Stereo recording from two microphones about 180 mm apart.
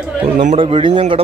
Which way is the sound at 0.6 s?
30° right (ahead or behind).